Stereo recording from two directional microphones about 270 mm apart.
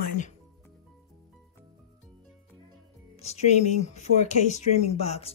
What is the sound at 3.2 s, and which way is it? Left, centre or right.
Speech, left.